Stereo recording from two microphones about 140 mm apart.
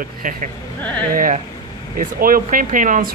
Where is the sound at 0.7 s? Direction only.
10° left (ahead or behind).